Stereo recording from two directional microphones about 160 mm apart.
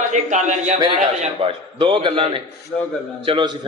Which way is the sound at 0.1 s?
50° right (ahead or behind).